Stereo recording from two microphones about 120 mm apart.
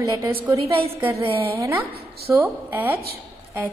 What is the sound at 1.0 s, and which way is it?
A woman's voice, 25° right (ahead or behind).